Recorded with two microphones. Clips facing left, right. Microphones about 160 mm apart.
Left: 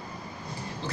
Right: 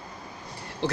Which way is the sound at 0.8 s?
70° right (ahead or behind).